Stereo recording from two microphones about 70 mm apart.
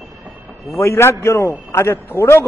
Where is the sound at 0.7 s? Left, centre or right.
Left.